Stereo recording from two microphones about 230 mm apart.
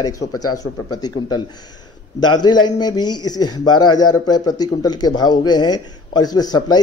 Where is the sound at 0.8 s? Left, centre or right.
Centre.